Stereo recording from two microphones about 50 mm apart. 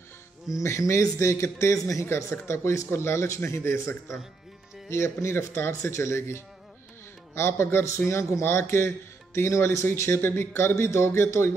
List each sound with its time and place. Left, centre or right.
0.6 s speech: left
1.1 s a man's voice: left
2.4 s a man's voice: left
5.9 s a man's voice: left
9.9 s a man's voice: left